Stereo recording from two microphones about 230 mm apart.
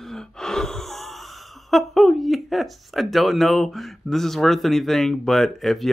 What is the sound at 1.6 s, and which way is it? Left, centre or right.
Speech, centre.